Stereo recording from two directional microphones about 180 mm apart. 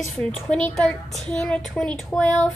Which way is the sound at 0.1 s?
5° left (ahead or behind).